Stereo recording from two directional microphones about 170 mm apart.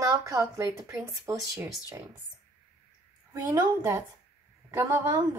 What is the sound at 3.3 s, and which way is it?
Speech, 20° right (ahead or behind).